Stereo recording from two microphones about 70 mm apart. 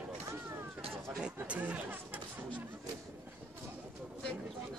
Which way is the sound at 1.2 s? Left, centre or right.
Centre.